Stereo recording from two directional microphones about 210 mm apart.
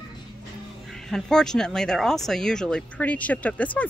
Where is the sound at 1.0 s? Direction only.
Centre (ahead or behind).